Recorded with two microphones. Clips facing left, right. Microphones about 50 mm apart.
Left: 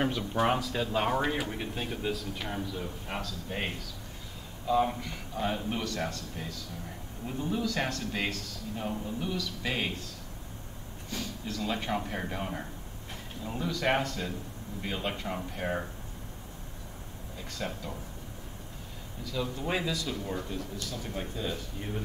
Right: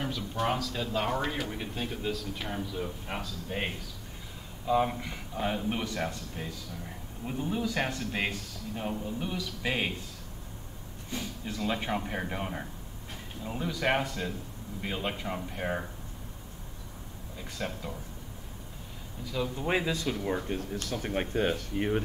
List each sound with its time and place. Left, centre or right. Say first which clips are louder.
0.0 s speech: left 5 dB; left
0.4 s a man's voice: left 3 dB; centre
11.1 s a man's voice: even; centre
17.4 s speech: right 1 dB; centre
19.3 s speech: right 2 dB; centre
20.4 s speech: right 3 dB; right